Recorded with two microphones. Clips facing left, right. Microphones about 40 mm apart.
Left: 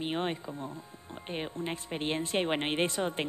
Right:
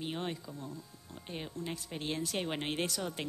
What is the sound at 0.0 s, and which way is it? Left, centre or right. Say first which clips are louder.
Speech: left 6 dB; left.